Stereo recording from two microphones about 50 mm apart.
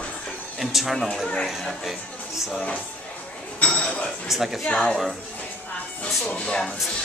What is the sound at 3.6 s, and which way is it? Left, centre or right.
Speech, left.